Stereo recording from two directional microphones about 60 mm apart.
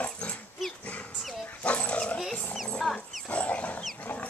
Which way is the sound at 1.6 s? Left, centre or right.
Left.